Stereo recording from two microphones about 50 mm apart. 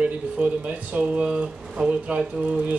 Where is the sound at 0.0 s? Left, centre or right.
Right.